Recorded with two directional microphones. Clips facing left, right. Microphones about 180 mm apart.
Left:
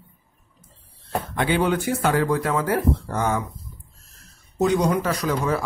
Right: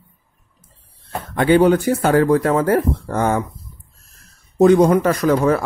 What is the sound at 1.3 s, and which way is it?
Speech, 45° right (ahead or behind).